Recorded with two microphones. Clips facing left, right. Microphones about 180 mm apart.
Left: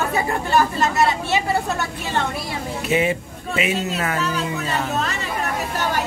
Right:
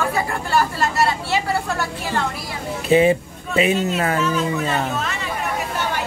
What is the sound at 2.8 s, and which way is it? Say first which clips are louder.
Speech: right 6 dB; 30° right (ahead or behind).